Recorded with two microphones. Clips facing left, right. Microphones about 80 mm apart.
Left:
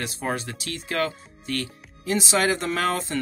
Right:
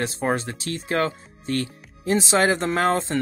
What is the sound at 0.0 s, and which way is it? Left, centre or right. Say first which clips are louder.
Speech: right 5 dB; right.